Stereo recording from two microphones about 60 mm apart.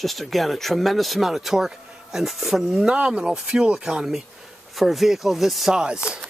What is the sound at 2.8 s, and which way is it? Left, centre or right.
Speech, centre.